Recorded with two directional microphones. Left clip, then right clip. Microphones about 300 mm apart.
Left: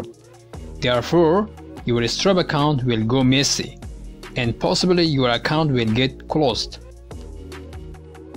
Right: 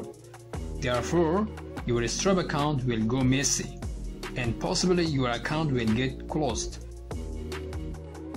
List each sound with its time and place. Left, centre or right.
0.7 s speech: centre
7.1 s music: centre